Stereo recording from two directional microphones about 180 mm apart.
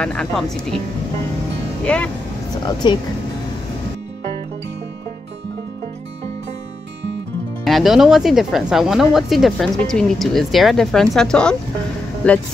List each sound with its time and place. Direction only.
0.0 s speech: 5° left (ahead or behind)
1.9 s speech: 5° left (ahead or behind)
2.6 s speech: 25° left (ahead or behind)
7.6 s speech: centre (ahead or behind)